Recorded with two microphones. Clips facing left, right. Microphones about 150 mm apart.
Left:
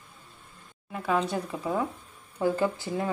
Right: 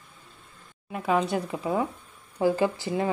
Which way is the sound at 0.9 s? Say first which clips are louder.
Right 2 dB; 15° right (ahead or behind).